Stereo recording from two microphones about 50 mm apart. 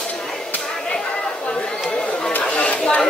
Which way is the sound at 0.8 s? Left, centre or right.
Centre.